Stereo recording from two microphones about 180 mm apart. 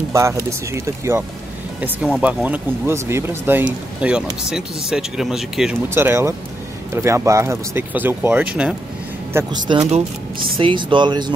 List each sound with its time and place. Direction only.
0.1 s speech: 15° right (ahead or behind)
5.9 s speech: 15° right (ahead or behind)
9.6 s speech: 25° right (ahead or behind)